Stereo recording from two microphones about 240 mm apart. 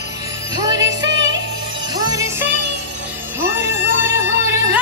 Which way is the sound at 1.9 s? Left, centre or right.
Centre.